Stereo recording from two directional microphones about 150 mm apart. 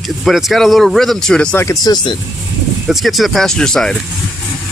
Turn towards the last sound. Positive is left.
turn(degrees=5)  # may be behind; listen again after turning